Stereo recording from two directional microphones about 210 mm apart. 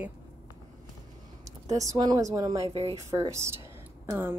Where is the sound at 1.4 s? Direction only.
15° right (ahead or behind).